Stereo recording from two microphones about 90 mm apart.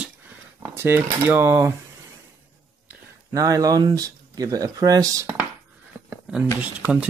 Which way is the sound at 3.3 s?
40° right (ahead or behind).